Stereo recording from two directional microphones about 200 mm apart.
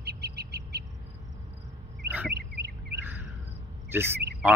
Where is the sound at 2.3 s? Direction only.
55° right (ahead or behind).